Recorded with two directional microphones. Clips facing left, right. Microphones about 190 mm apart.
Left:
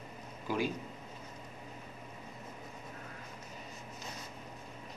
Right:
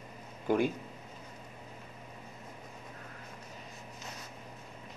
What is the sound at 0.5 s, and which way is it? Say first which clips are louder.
Speech: right 6 dB; 55° right (ahead or behind).